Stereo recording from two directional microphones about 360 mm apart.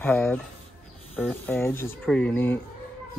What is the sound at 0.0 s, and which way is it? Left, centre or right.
Speech, centre.